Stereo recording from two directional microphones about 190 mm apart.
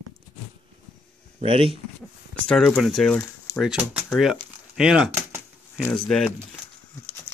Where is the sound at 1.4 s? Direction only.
30° right (ahead or behind).